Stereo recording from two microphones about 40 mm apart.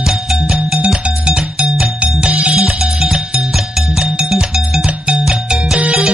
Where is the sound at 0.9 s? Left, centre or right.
Right.